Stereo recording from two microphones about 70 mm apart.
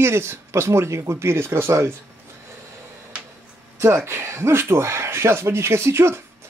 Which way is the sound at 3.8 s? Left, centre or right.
Right.